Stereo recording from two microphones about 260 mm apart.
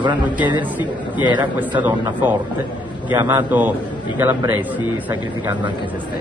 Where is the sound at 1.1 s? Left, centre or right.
Centre.